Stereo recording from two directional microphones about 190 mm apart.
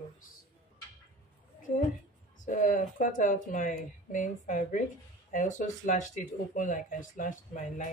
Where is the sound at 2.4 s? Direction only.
40° left (ahead or behind).